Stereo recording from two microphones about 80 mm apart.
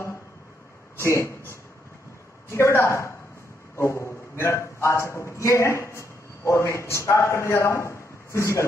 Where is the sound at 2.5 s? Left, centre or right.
Left.